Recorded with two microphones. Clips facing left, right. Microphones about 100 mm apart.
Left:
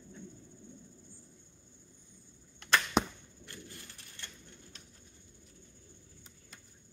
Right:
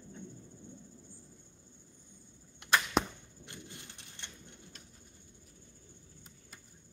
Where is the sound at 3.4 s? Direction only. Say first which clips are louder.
Even; 20° right (ahead or behind).